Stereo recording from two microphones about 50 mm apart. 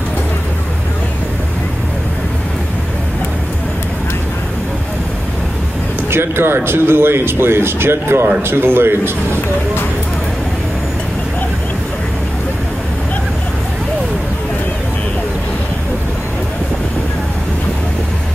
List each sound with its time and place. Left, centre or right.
6.0 s speech: right